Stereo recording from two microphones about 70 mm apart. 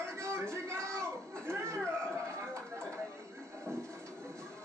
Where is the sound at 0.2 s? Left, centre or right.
Right.